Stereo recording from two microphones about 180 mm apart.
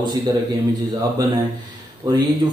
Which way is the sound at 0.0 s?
20° right (ahead or behind).